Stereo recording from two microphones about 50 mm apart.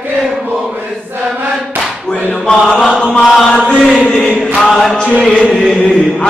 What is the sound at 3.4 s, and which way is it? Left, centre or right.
Mantra, centre.